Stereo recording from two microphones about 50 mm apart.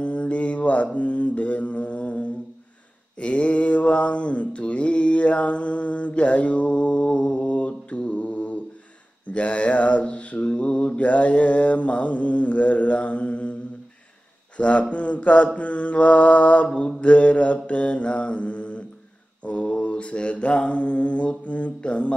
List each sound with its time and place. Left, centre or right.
0.0 s mantra: left
14.6 s mantra: left